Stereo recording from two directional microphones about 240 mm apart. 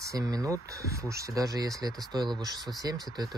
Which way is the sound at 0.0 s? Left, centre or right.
Centre.